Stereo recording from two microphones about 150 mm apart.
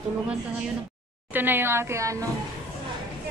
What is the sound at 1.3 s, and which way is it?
Speech, 15° right (ahead or behind).